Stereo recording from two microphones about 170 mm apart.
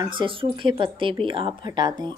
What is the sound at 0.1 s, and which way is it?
A woman's voice, 30° right (ahead or behind).